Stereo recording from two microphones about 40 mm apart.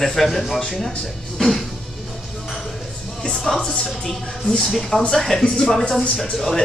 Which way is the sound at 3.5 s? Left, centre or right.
Centre.